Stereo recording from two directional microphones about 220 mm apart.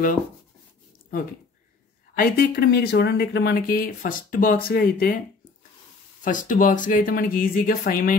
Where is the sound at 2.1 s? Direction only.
40° left (ahead or behind).